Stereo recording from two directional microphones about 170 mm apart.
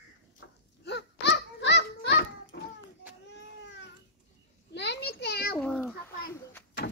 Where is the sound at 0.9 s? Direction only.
85° left.